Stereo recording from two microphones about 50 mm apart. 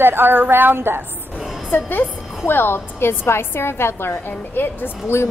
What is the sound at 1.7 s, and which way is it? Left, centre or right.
A woman's voice, left.